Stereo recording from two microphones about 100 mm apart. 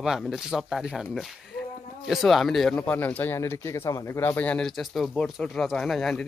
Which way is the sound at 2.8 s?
15° left (ahead or behind).